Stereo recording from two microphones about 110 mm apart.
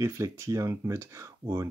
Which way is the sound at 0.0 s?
25° right (ahead or behind).